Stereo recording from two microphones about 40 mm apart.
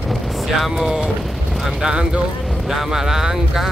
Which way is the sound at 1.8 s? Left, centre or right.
Right.